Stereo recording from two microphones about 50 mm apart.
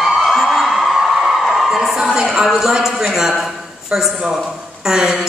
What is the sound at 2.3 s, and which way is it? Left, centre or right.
Speech, centre.